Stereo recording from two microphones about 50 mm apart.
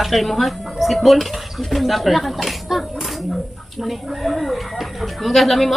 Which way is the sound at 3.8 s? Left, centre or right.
Centre.